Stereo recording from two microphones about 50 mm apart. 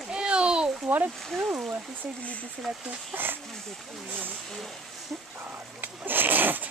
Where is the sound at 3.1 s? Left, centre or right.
Right.